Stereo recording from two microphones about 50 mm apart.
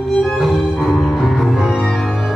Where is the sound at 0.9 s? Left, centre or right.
Centre.